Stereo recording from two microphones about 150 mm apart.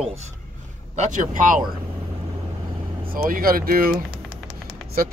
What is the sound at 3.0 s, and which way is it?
Speech, 75° right (ahead or behind).